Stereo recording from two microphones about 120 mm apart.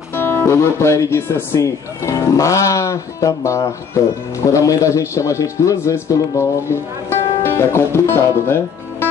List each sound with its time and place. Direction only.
0.1 s a man's voice: 20° left (ahead or behind)